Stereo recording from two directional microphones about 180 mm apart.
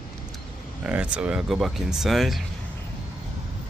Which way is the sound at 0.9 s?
5° right (ahead or behind).